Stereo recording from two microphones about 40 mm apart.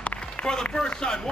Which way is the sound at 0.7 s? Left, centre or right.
Centre.